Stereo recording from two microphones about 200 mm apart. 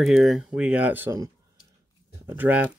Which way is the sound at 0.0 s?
Centre (ahead or behind).